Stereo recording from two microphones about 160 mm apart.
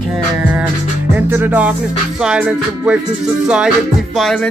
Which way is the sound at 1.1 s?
10° right (ahead or behind).